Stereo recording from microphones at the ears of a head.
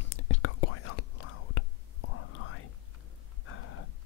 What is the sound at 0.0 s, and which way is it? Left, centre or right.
Whispering, left.